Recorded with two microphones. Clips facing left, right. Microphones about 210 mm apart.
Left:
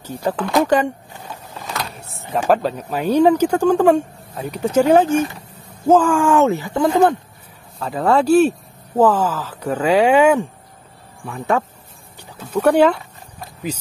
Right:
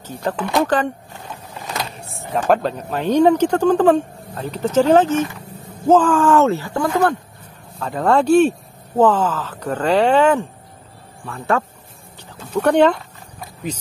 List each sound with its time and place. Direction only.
0.0 s speech: 10° left (ahead or behind)
1.8 s speech: centre (ahead or behind); by 7.2 s 20° left (ahead or behind)
7.8 s speech: 5° left (ahead or behind)